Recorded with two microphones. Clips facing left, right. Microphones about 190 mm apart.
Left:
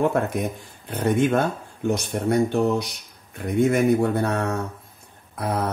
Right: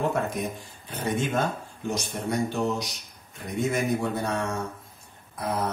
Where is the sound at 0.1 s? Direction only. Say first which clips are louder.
Left 4 dB; 60° left (ahead or behind).